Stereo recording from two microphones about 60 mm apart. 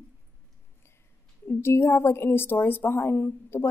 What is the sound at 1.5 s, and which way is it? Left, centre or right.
A woman's voice, left.